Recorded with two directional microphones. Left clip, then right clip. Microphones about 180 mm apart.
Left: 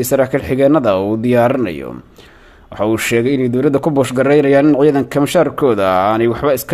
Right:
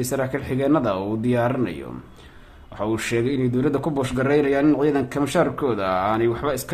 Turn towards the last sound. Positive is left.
turn(degrees=35)  # may be behind; listen again after turning